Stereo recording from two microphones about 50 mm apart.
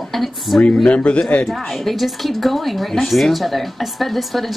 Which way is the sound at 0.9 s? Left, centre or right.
Left.